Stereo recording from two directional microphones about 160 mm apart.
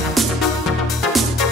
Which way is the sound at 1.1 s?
Centre (ahead or behind).